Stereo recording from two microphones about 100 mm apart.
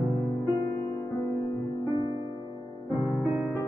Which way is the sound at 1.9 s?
35° right (ahead or behind).